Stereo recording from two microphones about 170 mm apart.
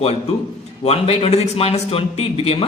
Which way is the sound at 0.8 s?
35° left (ahead or behind).